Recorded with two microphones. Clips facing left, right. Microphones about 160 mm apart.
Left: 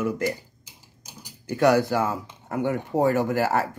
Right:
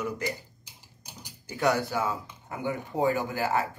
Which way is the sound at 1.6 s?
80° left.